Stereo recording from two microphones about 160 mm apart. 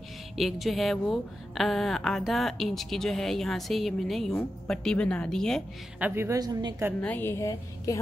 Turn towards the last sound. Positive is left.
turn(degrees=20)  # may be behind; listen again after turning